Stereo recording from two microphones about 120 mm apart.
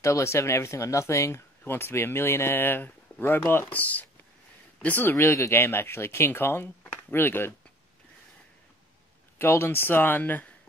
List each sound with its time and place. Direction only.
0.0 s speech: 25° left (ahead or behind)
9.4 s speech: 20° left (ahead or behind)